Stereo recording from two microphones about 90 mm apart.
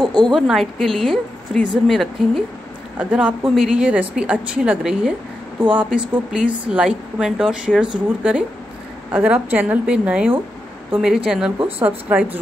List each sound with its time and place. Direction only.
0.0 s a woman's voice: 50° right (ahead or behind)
0.3 s a woman's voice: centre (ahead or behind)
3.0 s a woman's voice: 15° right (ahead or behind)
11.6 s speech: 20° right (ahead or behind)